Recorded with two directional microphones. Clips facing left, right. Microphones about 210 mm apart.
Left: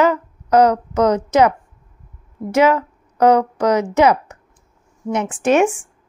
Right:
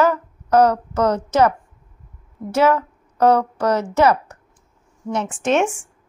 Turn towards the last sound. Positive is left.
turn(degrees=10)  # may be behind; listen again after turning